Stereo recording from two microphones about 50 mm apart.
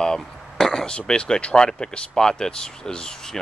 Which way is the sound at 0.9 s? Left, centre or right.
Centre.